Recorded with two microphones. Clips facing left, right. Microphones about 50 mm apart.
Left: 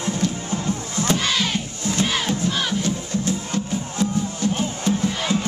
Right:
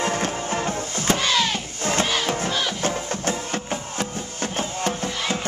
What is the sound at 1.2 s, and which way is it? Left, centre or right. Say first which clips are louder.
Music: right 1 dB; centre.